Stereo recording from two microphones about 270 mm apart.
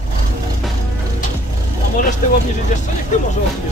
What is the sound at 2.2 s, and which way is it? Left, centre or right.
Vehicle, left.